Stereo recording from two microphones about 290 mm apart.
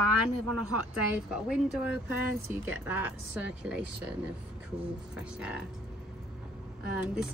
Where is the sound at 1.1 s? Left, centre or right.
Centre.